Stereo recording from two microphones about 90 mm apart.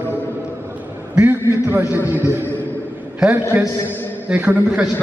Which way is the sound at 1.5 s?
20° right (ahead or behind).